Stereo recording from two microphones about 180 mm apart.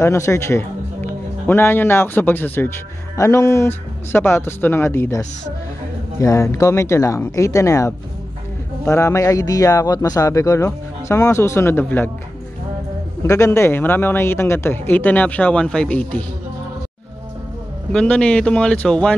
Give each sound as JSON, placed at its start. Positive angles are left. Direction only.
{"t": 0.0, "sound": "speech", "side_deg": 15}
{"t": 13.2, "sound": "speech", "side_deg": 15}
{"t": 17.9, "sound": "speech", "side_deg": 5}